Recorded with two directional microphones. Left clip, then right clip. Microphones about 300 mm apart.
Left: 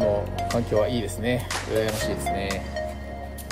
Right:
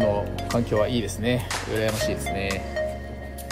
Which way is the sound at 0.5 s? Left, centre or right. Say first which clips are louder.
Even; centre.